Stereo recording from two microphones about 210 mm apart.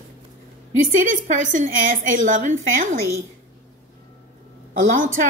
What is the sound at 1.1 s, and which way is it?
A woman's voice, 35° right (ahead or behind).